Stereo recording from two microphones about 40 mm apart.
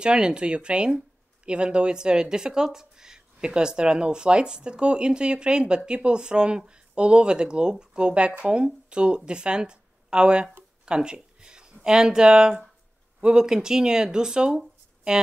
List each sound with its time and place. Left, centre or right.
0.0 s speech: right